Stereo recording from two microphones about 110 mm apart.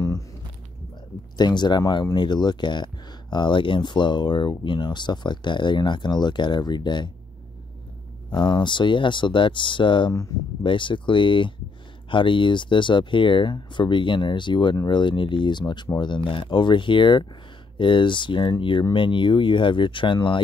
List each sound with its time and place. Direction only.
1.4 s speech: 40° left (ahead or behind)
8.3 s speech: 45° left (ahead or behind)